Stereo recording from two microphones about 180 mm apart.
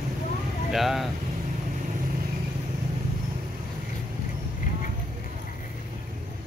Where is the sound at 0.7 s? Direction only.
Centre (ahead or behind).